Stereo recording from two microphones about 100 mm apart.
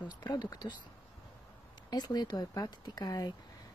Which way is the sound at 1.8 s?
45° left (ahead or behind).